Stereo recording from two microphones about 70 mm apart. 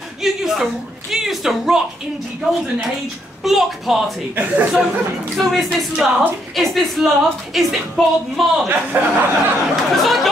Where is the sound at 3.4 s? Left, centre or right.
Centre.